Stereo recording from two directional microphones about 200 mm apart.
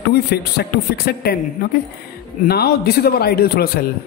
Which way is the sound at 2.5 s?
50° left (ahead or behind).